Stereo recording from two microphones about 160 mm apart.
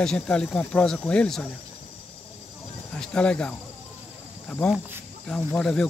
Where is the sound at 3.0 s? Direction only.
5° left (ahead or behind).